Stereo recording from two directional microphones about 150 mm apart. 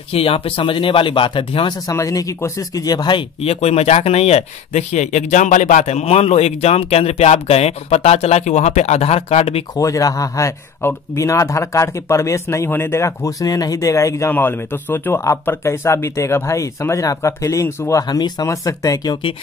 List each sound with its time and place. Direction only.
0.1 s speech: 40° left (ahead or behind)
9.8 s speech: 20° left (ahead or behind)